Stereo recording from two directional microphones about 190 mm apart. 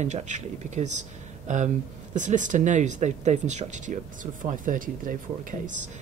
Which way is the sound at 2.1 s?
40° right (ahead or behind).